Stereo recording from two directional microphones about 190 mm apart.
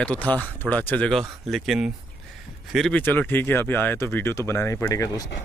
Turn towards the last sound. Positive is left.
turn(degrees=20)  # may be behind; listen again after turning